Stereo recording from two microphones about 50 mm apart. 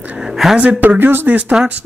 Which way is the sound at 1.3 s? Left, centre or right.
Right.